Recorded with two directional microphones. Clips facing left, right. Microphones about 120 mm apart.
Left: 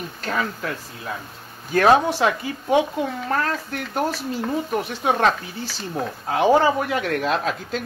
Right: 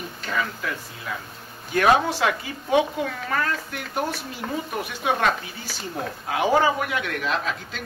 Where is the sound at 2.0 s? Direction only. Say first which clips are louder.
Left 3 dB; 20° left (ahead or behind).